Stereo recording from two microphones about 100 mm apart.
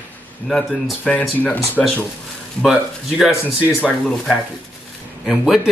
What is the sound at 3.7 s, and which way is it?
Speech, 15° left (ahead or behind).